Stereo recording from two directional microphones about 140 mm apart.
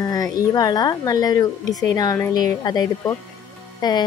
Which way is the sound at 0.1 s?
25° left (ahead or behind).